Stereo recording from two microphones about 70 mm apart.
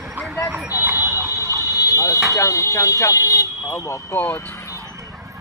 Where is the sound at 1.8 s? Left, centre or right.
Left.